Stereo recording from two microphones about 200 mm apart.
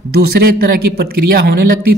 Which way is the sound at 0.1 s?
50° right (ahead or behind).